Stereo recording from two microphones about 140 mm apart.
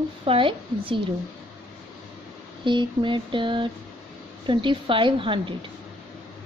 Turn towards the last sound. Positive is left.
turn(degrees=-35)  # may be behind; listen again after turning